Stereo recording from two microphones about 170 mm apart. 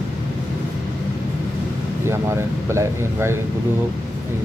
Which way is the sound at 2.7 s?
15° right (ahead or behind).